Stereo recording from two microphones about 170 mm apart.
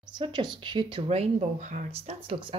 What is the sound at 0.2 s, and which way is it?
A woman's voice, 25° right (ahead or behind).